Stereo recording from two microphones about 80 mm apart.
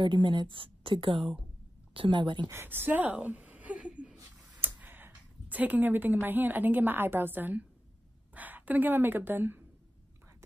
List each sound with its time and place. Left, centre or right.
0.0 s a woman's voice: right
2.5 s a sound: right
6.2 s a woman's voice: right